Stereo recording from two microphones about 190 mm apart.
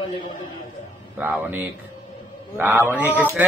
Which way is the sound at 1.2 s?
10° right (ahead or behind).